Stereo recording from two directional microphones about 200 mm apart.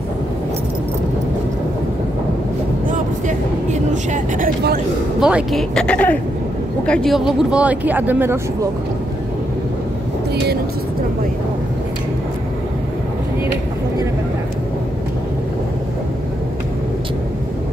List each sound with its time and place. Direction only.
2.9 s vehicle: 40° right (ahead or behind)
5.2 s a woman's voice: centre (ahead or behind)